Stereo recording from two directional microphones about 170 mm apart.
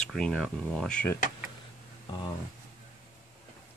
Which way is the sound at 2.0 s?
25° left (ahead or behind).